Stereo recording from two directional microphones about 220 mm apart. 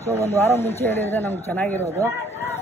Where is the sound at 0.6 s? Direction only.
30° left (ahead or behind).